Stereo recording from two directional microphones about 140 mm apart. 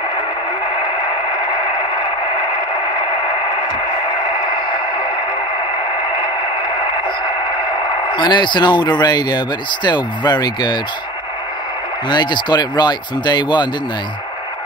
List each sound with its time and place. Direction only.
4.5 s a sound: 35° left (ahead or behind)
8.1 s speech: 35° left (ahead or behind)
12.1 s speech: 30° left (ahead or behind)